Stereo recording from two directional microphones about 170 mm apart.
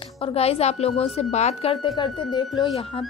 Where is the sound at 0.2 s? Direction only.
35° left (ahead or behind).